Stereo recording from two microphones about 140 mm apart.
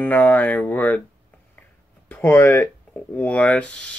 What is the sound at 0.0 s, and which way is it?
Speech, 10° left (ahead or behind).